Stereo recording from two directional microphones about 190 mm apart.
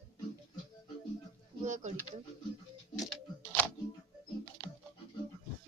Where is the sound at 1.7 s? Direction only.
40° right (ahead or behind).